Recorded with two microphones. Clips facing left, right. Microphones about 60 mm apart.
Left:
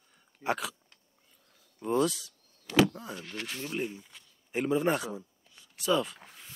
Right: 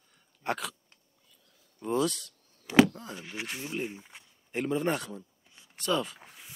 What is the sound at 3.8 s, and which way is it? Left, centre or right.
Speech, right.